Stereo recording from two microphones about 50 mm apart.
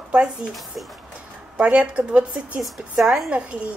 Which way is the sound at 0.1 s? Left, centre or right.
Right.